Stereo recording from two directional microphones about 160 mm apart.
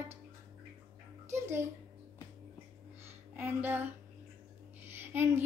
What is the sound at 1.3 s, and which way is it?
Child singing, 15° right (ahead or behind).